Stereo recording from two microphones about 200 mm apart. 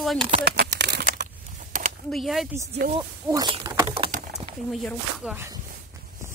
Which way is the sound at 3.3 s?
20° right (ahead or behind).